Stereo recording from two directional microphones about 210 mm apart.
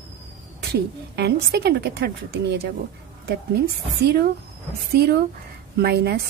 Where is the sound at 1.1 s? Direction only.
50° right (ahead or behind).